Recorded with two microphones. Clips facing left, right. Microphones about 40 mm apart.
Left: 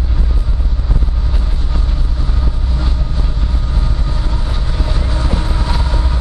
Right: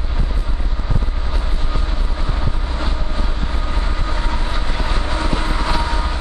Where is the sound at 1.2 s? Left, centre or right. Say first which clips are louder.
Even; centre.